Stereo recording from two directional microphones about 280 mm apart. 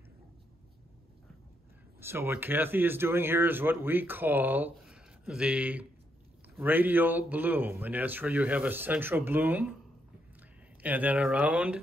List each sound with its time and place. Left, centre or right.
2.0 s speech: centre
10.8 s speech: centre